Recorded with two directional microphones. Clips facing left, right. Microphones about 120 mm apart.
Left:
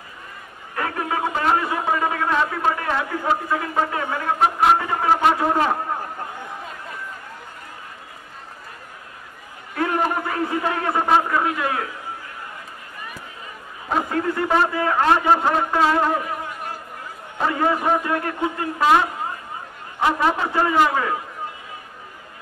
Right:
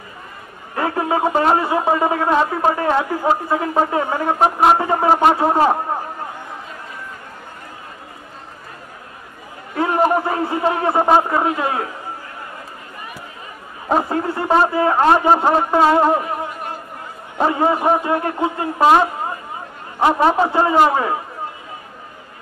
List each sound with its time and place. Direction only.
0.7 s a man's voice: 30° right (ahead or behind)
9.8 s a man's voice: 25° right (ahead or behind)
13.8 s a man's voice: 30° right (ahead or behind)